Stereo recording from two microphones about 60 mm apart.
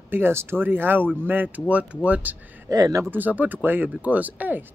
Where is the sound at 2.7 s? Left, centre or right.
Right.